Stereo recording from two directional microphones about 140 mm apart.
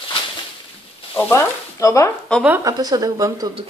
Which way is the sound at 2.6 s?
25° right (ahead or behind).